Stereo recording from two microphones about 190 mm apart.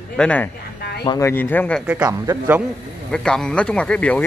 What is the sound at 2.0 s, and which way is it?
Speech, 20° right (ahead or behind).